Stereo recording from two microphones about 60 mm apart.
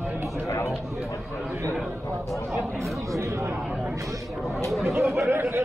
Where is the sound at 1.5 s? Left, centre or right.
Right.